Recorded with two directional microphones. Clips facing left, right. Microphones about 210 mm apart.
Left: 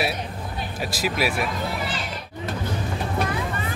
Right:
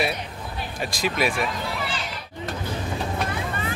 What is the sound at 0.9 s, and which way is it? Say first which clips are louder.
Speech: even; 5° left (ahead or behind).